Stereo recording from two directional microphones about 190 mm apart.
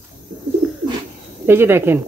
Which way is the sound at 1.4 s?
10° right (ahead or behind).